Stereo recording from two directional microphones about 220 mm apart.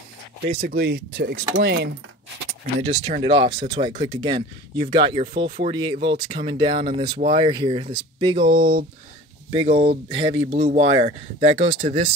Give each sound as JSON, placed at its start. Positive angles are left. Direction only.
{"t": 0.6, "sound": "speech", "side_deg": -50}
{"t": 2.8, "sound": "speech", "side_deg": -25}